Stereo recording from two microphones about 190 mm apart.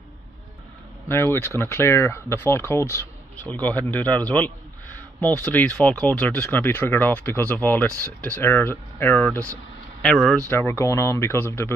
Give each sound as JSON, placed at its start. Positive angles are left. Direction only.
{"t": 1.0, "sound": "a man's voice", "side_deg": 10}
{"t": 10.5, "sound": "speech", "side_deg": 15}